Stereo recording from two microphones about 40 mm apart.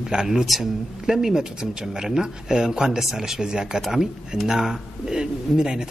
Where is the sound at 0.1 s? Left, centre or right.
Centre.